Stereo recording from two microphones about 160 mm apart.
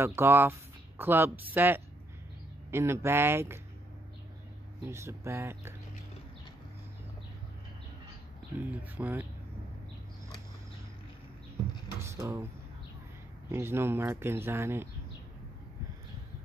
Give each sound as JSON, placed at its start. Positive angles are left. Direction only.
{"t": 0.0, "sound": "speech", "side_deg": -15}
{"t": 4.8, "sound": "speech", "side_deg": -15}
{"t": 8.5, "sound": "speech", "side_deg": -10}
{"t": 12.0, "sound": "a sound", "side_deg": -15}
{"t": 13.5, "sound": "speech", "side_deg": -15}